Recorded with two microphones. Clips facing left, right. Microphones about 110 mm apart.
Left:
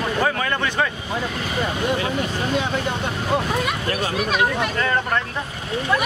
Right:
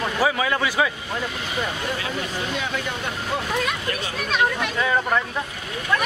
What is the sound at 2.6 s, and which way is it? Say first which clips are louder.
Speech: left 4 dB; 30° left (ahead or behind).